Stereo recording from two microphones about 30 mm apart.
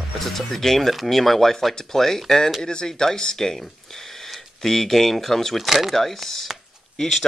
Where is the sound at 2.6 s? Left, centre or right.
Left.